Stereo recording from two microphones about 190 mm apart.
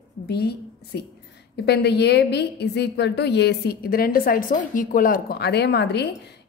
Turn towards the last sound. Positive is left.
turn(degrees=60)  # may be behind; listen again after turning